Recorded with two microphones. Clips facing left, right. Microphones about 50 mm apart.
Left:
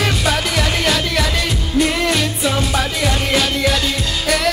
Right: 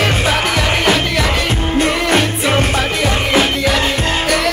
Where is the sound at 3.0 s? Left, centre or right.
Right.